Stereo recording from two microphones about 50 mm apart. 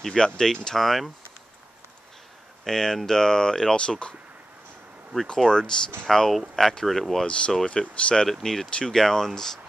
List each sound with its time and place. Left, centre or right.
0.2 s speech: centre
2.6 s speech: centre
5.1 s speech: centre
7.2 s speech: left
8.3 s speech: centre